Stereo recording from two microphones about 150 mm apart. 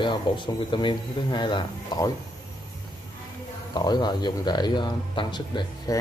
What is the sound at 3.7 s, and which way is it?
Speech, 25° left (ahead or behind).